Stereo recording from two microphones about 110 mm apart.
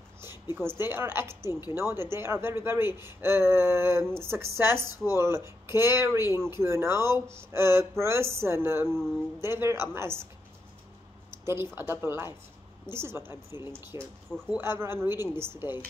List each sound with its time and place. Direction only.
0.6 s speech: 20° right (ahead or behind)
11.2 s speech: 20° right (ahead or behind)